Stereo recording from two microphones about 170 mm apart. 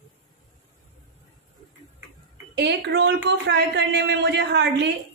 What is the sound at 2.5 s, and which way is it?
A woman's voice, 85° right.